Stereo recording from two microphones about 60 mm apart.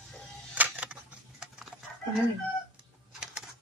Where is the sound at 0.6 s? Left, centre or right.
Right.